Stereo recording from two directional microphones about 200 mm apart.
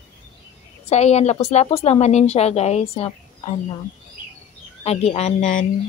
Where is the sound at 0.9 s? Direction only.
35° left (ahead or behind).